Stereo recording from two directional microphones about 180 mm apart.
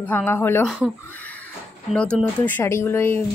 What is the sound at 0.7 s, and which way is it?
Speech, 5° right (ahead or behind).